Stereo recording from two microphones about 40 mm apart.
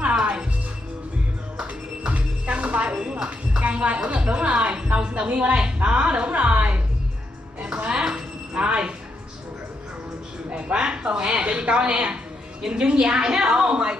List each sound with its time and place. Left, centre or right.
0.2 s music: right
1.6 s music: right
5.9 s a woman's voice: right
7.6 s music: right
8.0 s a sound: right
10.5 s speech: right